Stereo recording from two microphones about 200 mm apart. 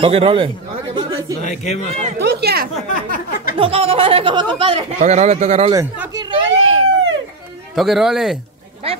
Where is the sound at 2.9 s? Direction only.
45° left (ahead or behind).